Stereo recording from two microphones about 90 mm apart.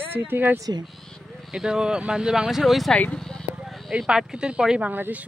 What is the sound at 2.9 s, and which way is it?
Speech, 10° left (ahead or behind).